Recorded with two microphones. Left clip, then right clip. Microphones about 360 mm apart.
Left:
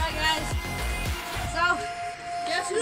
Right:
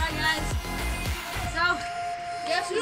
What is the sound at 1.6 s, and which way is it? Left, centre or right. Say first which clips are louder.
Music: left 1 dB; centre.